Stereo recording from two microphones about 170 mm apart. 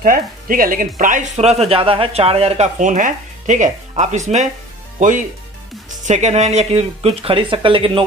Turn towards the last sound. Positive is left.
turn(degrees=-30)  # may be behind; listen again after turning